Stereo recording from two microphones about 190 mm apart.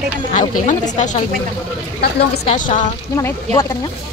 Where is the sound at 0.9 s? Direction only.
40° left (ahead or behind).